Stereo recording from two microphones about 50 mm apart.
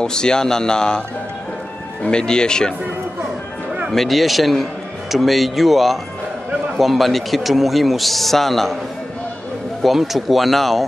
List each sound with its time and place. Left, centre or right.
0.0 s speech: centre
2.0 s speech: centre
3.9 s a man's voice: centre
9.8 s a man's voice: centre